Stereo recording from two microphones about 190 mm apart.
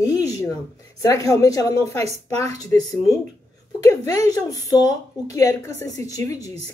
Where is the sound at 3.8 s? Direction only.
15° left (ahead or behind).